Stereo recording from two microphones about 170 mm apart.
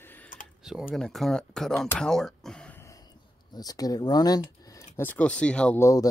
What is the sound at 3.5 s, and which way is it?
Speech, 20° left (ahead or behind).